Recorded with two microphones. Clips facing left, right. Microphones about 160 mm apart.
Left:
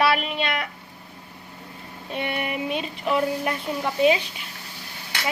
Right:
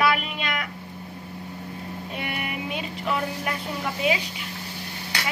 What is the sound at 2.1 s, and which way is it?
Speech, 25° left (ahead or behind).